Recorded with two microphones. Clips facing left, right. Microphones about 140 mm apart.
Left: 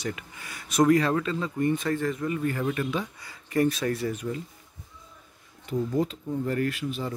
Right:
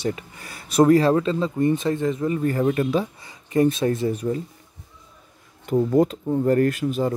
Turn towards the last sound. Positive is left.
turn(degrees=-45)  # may be behind; listen again after turning